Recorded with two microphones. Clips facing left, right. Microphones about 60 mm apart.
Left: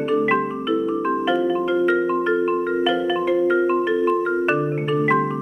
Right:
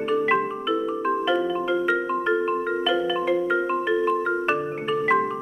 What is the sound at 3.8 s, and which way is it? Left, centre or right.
Music, centre.